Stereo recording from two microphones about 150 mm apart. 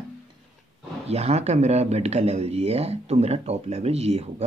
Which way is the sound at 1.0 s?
45° right (ahead or behind).